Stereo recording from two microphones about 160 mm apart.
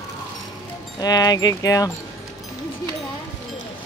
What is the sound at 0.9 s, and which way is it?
Speech, 25° left (ahead or behind).